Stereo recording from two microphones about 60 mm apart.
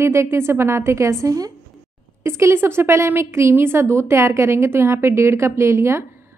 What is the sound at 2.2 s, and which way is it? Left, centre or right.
A woman's voice, right.